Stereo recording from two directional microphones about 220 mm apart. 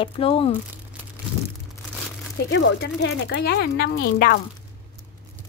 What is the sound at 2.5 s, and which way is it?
A woman's voice, 55° left (ahead or behind).